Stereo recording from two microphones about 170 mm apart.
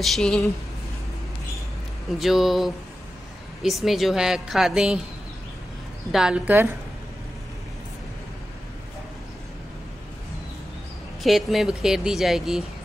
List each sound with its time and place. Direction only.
0.0 s a woman's voice: 5° left (ahead or behind)
2.1 s a woman's voice: centre (ahead or behind)
6.1 s a woman's voice: 5° right (ahead or behind)
11.2 s a woman's voice: centre (ahead or behind)